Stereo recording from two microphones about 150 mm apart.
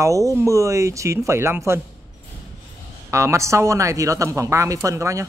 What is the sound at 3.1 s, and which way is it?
Speech, 20° right (ahead or behind).